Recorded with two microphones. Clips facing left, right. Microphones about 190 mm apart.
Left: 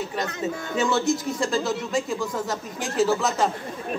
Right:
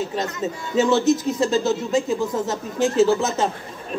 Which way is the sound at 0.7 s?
20° right (ahead or behind).